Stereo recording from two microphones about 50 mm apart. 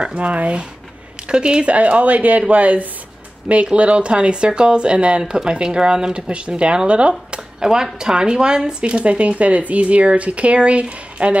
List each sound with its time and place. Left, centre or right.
0.1 s speech: right